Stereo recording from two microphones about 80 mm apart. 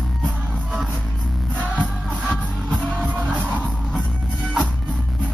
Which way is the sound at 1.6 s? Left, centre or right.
Centre.